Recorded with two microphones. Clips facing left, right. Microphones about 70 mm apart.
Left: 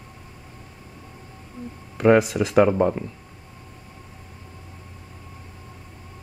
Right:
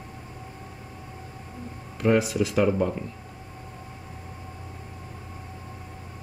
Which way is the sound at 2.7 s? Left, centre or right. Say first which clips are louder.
Left 4 dB; left.